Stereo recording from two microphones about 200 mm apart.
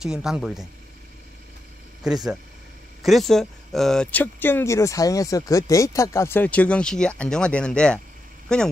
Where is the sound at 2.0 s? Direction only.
Centre (ahead or behind).